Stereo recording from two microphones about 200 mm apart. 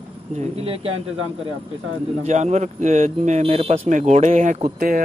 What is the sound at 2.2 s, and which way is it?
Speech, 35° right (ahead or behind).